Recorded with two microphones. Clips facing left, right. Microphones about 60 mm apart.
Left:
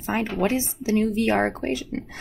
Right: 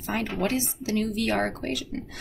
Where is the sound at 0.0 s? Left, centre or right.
Left.